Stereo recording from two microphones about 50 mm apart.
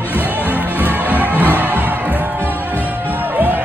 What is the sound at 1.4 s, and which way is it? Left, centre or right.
Crowd, right.